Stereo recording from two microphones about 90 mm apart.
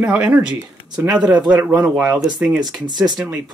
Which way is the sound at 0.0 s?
10° right (ahead or behind).